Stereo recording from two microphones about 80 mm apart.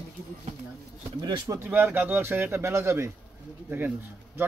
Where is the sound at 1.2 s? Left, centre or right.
Right.